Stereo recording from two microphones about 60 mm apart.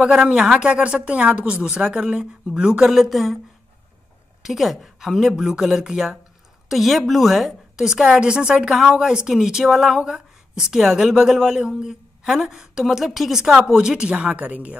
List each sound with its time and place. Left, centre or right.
0.0 s a woman's voice: centre
4.4 s a woman's voice: centre; by 14.8 s right